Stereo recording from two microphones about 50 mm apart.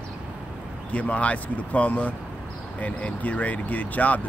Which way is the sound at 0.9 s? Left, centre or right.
Left.